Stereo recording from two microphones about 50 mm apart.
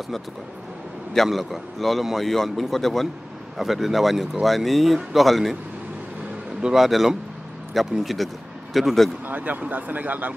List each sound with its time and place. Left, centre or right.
1.1 s speech: centre
6.6 s speech: centre
9.3 s speech: right